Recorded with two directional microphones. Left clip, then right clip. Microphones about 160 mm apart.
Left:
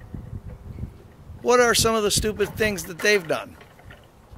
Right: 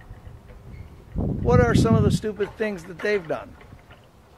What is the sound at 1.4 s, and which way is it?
Speech, 10° left (ahead or behind).